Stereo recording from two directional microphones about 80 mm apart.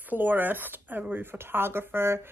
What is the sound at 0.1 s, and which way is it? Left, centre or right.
Speech, right.